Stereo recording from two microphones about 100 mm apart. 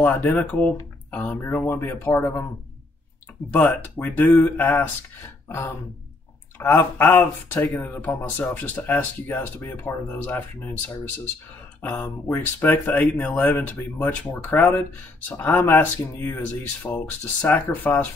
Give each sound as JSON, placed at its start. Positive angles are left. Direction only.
{"t": 0.0, "sound": "speech", "side_deg": 15}
{"t": 3.5, "sound": "speech", "side_deg": 15}